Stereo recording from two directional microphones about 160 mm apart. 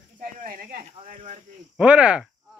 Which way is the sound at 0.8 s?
50° right (ahead or behind).